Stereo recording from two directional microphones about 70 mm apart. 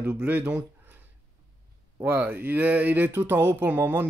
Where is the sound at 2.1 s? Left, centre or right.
Right.